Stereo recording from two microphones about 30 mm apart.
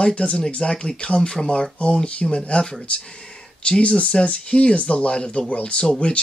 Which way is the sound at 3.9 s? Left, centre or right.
Left.